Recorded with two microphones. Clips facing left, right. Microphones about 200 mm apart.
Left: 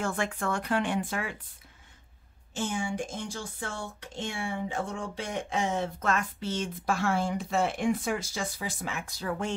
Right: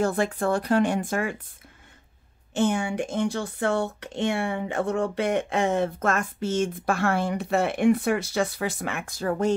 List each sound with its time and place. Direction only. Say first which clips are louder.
0.0 s speech: right 7 dB; 35° right (ahead or behind)
2.5 s speech: right 8 dB; 65° right (ahead or behind); by 9.6 s 40° right (ahead or behind)